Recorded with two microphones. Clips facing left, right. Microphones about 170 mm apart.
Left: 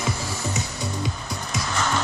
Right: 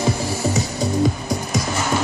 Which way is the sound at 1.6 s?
10° right (ahead or behind).